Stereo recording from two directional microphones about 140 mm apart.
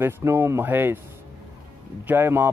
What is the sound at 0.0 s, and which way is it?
Speech, 15° right (ahead or behind).